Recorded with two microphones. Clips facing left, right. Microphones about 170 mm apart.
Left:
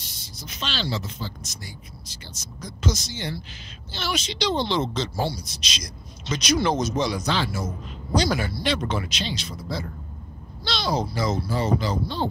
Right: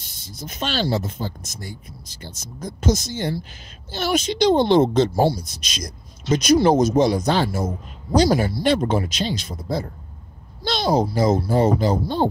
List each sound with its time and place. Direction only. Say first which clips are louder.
0.2 s speech: right 6 dB; 50° right (ahead or behind)